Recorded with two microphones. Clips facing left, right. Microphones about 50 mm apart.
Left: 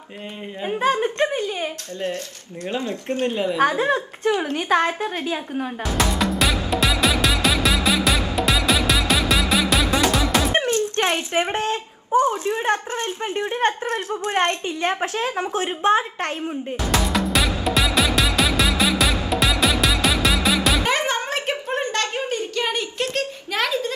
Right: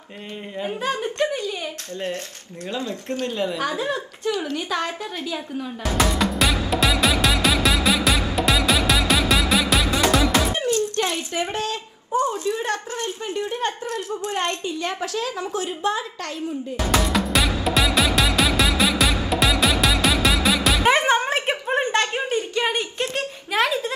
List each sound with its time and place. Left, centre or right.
0.7 s speech: left
2.7 s speech: left
5.9 s music: centre
10.5 s speech: left
16.9 s music: centre
20.8 s a sound: right